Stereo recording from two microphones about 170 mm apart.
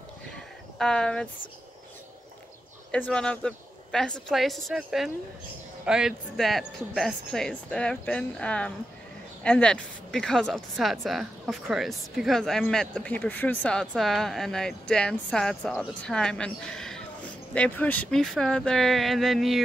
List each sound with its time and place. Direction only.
0.7 s speech: 5° left (ahead or behind)
2.9 s speech: 5° left (ahead or behind)